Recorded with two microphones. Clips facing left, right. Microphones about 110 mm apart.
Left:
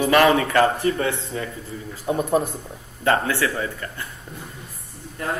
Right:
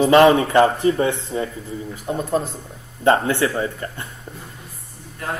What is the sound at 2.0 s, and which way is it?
Speech, 15° left (ahead or behind).